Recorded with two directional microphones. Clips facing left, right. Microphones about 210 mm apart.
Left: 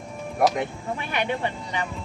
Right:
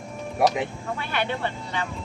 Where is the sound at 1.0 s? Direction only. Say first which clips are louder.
Left 1 dB; 15° left (ahead or behind).